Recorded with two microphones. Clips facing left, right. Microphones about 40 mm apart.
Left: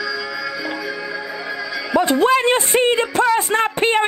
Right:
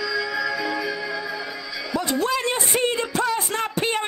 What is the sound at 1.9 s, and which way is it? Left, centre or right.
Speech, left.